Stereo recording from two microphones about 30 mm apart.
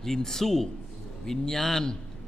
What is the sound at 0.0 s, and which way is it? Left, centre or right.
A man's voice, centre.